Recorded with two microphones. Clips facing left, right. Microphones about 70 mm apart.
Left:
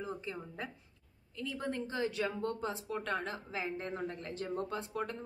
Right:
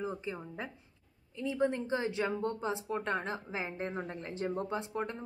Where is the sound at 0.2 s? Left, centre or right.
Right.